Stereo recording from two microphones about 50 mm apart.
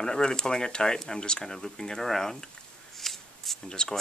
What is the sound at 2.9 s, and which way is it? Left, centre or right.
Shuffling cards, centre.